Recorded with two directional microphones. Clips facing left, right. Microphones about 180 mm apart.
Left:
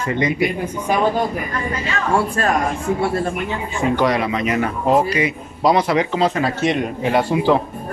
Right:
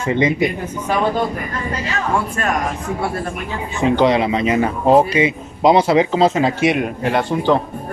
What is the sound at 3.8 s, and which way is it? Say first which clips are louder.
Speech: right 4 dB; 25° right (ahead or behind).